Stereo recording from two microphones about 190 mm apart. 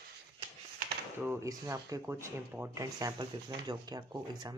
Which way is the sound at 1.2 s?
15° right (ahead or behind).